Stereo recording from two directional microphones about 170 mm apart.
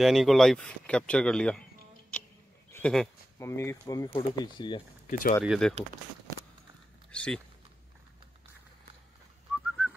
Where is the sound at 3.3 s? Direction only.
15° left (ahead or behind).